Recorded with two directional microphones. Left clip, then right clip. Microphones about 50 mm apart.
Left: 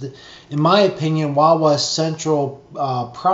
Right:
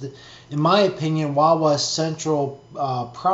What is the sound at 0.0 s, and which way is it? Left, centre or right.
Speech, left.